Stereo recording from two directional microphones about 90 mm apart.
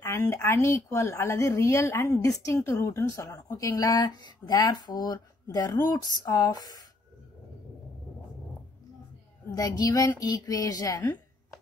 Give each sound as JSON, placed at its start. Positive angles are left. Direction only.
{"t": 0.0, "sound": "a woman's voice", "side_deg": 30}
{"t": 9.5, "sound": "a woman's voice", "side_deg": 45}